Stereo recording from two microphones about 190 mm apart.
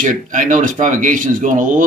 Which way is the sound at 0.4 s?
45° right (ahead or behind).